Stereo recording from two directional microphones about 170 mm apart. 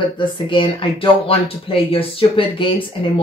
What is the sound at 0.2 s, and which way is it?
Speech, 30° left (ahead or behind).